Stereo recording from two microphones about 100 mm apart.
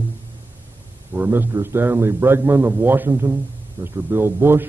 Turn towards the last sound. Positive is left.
turn(degrees=-25)  # may be behind; listen again after turning